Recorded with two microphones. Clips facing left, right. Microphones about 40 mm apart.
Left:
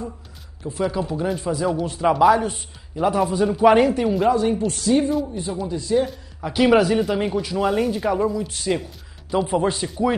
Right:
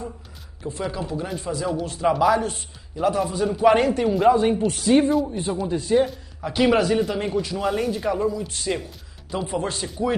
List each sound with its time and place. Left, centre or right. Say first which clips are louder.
0.7 s speech: left 4 dB; centre
4.8 s speech: right 2 dB; right
6.0 s speech: left 1 dB; centre